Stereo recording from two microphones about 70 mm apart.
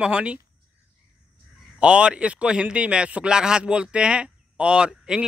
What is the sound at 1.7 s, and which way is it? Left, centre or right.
A man's voice, centre.